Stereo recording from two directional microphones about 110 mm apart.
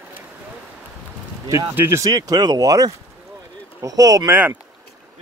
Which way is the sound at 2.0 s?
35° right (ahead or behind).